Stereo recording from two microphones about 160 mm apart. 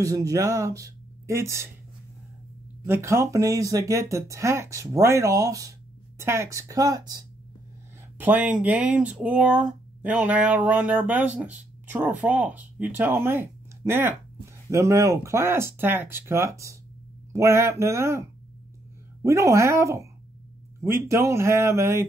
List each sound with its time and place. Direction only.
0.0 s speech: 20° right (ahead or behind)
2.9 s speech: 15° right (ahead or behind)
8.2 s speech: 10° right (ahead or behind)
19.2 s speech: 20° right (ahead or behind)